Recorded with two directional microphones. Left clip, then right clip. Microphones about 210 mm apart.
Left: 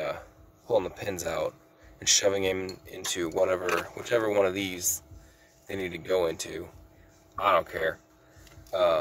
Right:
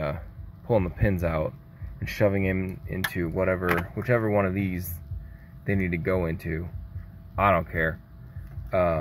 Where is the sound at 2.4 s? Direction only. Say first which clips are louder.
Left 1 dB; 25° left (ahead or behind).